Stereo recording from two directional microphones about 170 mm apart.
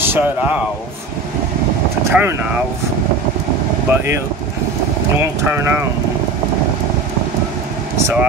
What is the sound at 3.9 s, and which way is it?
Speech, 15° right (ahead or behind).